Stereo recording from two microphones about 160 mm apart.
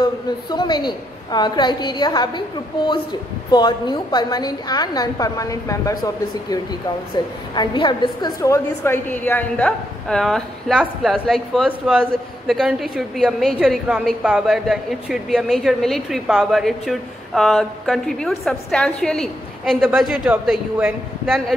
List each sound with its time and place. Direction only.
0.0 s a woman's voice: 25° left (ahead or behind)
3.5 s a woman's voice: 25° left (ahead or behind)
7.2 s a woman's voice: 25° left (ahead or behind)
8.4 s a woman's voice: 15° left (ahead or behind); by 21.5 s 5° right (ahead or behind)